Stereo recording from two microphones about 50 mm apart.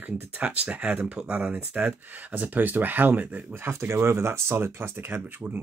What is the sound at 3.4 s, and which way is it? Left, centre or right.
Speech, right.